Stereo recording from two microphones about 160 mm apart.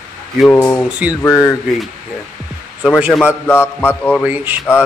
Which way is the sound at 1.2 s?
20° left (ahead or behind).